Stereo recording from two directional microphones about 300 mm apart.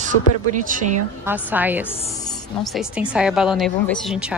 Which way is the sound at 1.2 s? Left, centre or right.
Centre.